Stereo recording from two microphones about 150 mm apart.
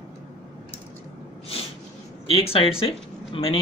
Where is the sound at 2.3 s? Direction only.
40° left (ahead or behind).